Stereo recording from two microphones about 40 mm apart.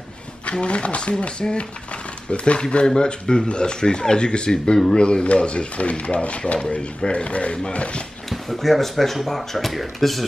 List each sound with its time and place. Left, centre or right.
0.5 s speech: left
8.3 s speech: centre